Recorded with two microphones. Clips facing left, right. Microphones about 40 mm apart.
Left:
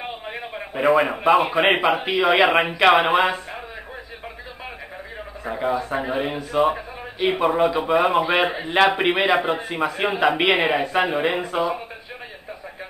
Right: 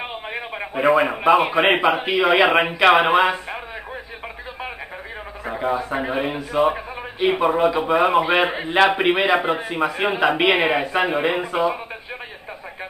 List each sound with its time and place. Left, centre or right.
0.0 s a sound: right
0.7 s a man's voice: centre
5.4 s a man's voice: centre